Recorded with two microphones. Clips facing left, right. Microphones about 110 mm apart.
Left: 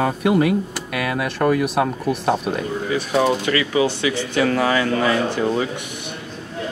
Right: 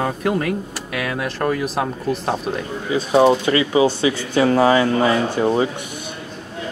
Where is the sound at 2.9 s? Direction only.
25° right (ahead or behind).